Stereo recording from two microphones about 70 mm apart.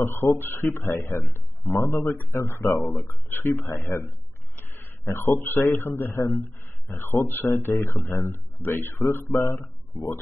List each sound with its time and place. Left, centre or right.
0.0 s speech: left
1.6 s speech: left
1.9 s speech: left
2.7 s speech: left
3.1 s speech: left
3.4 s speech: left
4.6 s a sound: left
5.0 s speech: left
9.3 s a man's voice: left